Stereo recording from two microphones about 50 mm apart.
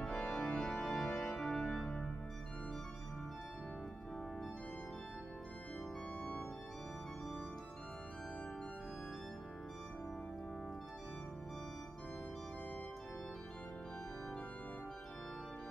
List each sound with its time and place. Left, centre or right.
0.0 s organ: centre
1.2 s music: centre
1.9 s organ: centre